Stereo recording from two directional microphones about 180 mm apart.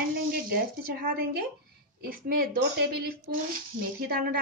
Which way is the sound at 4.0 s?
55° right (ahead or behind).